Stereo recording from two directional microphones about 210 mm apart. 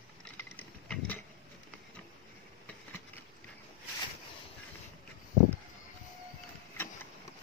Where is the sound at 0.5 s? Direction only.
5° left (ahead or behind).